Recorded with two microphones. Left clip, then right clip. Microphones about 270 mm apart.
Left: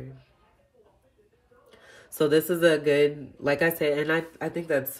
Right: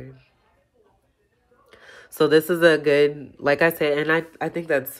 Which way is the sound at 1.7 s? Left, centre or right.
Centre.